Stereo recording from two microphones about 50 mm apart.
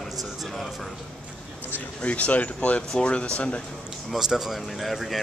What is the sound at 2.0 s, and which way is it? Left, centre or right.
Speech, left.